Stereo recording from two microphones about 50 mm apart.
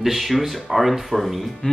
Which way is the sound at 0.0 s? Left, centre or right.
Centre.